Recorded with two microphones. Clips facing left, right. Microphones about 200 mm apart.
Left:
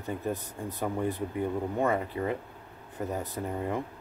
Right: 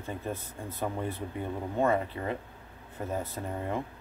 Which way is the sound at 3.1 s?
15° left (ahead or behind).